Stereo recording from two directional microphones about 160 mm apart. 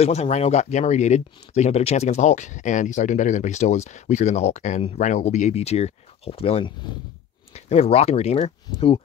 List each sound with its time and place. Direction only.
0.0 s speech: 45° left (ahead or behind)